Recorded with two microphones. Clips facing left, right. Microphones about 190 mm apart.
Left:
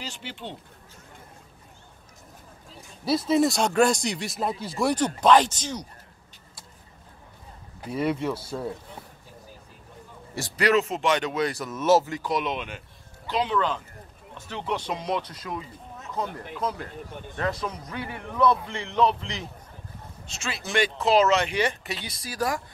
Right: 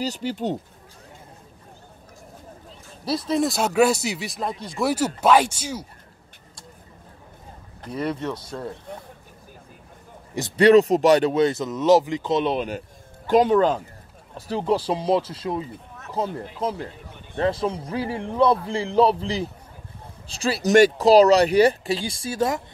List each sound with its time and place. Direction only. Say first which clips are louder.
0.0 s speech: right 11 dB; 40° right (ahead or behind)
3.1 s speech: left 1 dB; centre (ahead or behind)
7.8 s speech: left 1 dB; 5° left (ahead or behind)
10.5 s speech: right 9 dB; 30° right (ahead or behind)